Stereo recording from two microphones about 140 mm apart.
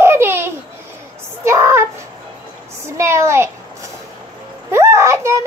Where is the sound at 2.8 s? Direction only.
20° right (ahead or behind).